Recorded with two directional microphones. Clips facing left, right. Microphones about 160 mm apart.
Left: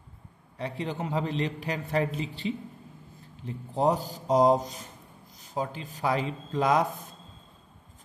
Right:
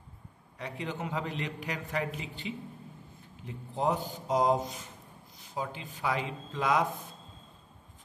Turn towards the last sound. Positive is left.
turn(degrees=40)  # may be behind; listen again after turning